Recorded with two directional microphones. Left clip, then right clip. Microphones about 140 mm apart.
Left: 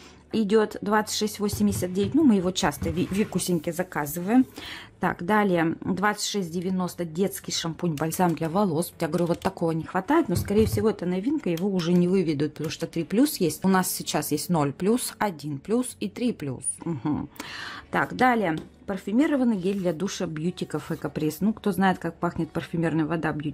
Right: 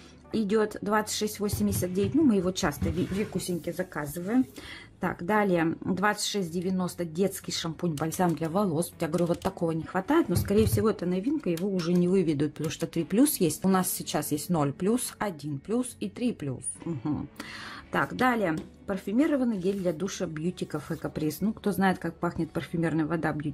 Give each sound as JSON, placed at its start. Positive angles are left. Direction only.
{"t": 0.3, "sound": "speech", "side_deg": 15}
{"t": 3.3, "sound": "speech", "side_deg": 45}
{"t": 5.0, "sound": "speech", "side_deg": 20}
{"t": 12.1, "sound": "speech", "side_deg": 10}
{"t": 13.7, "sound": "speech", "side_deg": 15}
{"t": 17.9, "sound": "speech", "side_deg": 15}